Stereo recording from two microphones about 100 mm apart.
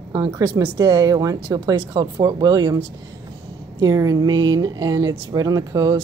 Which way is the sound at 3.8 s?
40° right (ahead or behind).